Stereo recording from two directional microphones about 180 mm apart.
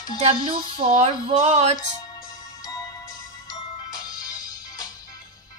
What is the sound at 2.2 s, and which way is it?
Music, 20° left (ahead or behind).